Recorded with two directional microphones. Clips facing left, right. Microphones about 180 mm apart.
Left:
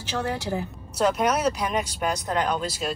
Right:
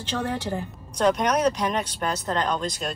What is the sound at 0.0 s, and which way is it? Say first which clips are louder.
Speech: even; 10° left (ahead or behind).